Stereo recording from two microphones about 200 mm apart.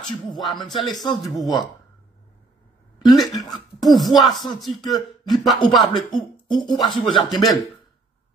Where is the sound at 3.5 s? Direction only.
Centre (ahead or behind).